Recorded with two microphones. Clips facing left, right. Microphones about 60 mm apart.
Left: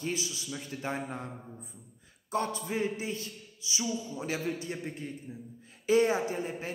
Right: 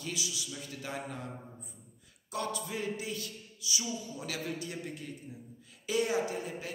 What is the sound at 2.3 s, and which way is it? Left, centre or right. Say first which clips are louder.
A man's voice: left 5 dB; left.